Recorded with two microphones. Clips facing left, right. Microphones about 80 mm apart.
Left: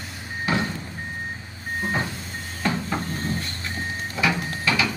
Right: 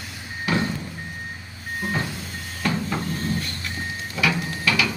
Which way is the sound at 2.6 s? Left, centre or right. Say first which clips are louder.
Even; centre.